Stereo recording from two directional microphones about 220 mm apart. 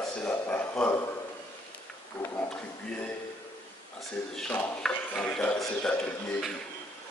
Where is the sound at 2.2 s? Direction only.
10° left (ahead or behind).